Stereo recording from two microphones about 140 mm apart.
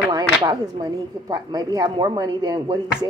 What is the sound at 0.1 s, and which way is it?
Speech, 30° right (ahead or behind).